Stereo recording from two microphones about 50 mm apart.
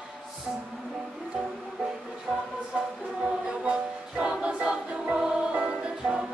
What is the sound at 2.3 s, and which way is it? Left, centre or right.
Music, centre.